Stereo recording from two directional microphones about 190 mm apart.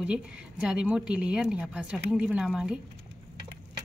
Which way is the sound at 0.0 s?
5° right (ahead or behind).